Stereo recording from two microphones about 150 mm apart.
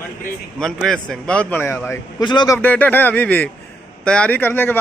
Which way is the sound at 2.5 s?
10° left (ahead or behind).